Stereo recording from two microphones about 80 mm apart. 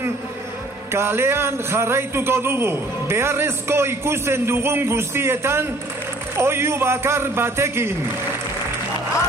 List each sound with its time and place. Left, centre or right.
0.9 s a man's voice: right